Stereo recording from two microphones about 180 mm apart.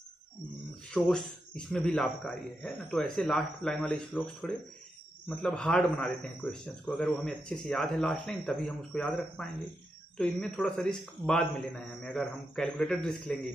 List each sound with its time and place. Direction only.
0.9 s a man's voice: 5° left (ahead or behind)